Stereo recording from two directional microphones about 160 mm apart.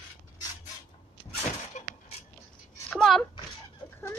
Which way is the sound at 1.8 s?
50° left (ahead or behind).